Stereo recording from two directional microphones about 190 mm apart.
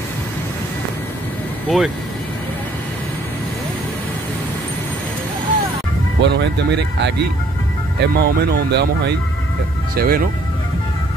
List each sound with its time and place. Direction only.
1.7 s speech: centre (ahead or behind)
6.2 s speech: 65° right (ahead or behind)